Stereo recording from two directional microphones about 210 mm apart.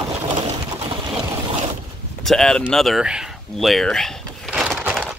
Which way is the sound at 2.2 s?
Centre (ahead or behind).